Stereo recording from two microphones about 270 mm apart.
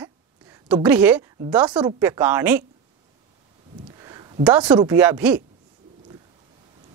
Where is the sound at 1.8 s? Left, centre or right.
Centre.